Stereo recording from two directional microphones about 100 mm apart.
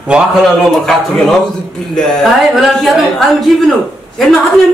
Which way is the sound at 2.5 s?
Centre (ahead or behind).